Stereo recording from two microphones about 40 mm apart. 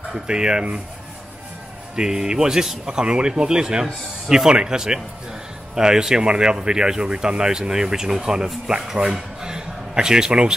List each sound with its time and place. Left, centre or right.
0.3 s speech: centre
2.0 s speech: centre
3.8 s speech: centre
4.5 s speech: centre
9.1 s a sound: centre